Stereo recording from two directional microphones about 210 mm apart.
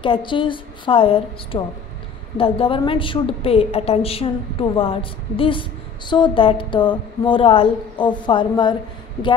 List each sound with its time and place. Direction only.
0.0 s a woman's voice: 25° left (ahead or behind)